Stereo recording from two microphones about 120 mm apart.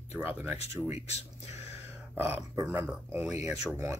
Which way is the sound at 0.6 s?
60° left (ahead or behind).